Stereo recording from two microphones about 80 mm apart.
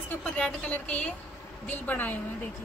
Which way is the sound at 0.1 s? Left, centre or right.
Centre.